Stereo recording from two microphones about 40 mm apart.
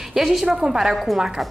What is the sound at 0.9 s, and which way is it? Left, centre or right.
Speech, centre.